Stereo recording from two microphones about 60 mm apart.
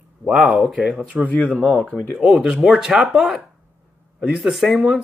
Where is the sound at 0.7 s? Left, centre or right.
Centre.